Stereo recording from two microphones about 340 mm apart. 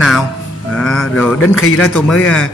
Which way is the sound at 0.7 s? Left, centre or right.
Centre.